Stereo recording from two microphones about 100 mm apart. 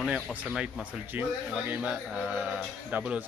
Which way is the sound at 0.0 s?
10° right (ahead or behind).